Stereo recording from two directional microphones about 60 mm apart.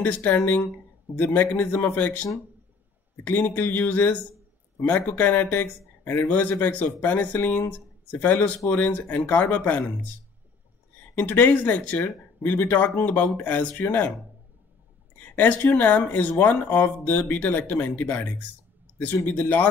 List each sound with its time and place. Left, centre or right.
0.0 s speech: left
3.3 s speech: left
4.9 s speech: left
11.1 s speech: left
15.3 s speech: left